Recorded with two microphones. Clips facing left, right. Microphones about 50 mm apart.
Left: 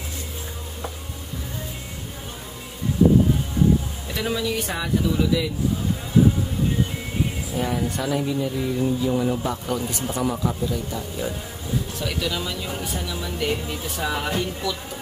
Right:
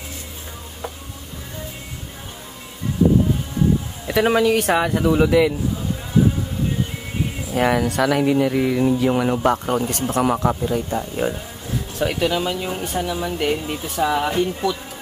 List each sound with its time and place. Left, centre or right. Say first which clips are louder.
4.1 s speech: right 9 dB; right
7.5 s speech: right 8 dB; right
10.5 s speech: right 5 dB; right
12.8 s speech: right 6 dB; right
13.9 s speech: right 6 dB; centre
14.4 s speech: right 6 dB; right